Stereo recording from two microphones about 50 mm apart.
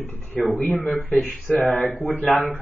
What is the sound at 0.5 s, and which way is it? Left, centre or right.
Speech, left.